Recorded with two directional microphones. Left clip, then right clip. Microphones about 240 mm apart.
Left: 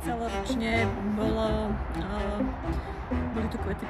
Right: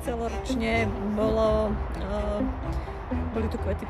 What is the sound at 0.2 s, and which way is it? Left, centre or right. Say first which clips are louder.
Music: right 1 dB; centre.